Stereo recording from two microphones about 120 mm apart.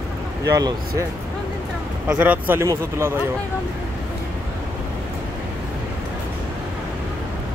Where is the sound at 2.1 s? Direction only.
15° right (ahead or behind).